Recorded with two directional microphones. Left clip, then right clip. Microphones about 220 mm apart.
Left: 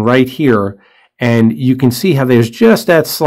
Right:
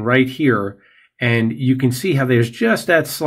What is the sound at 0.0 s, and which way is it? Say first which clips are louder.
Speech: left 5 dB; 50° left (ahead or behind).